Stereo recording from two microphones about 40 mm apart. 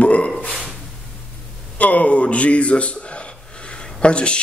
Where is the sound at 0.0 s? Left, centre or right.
Left.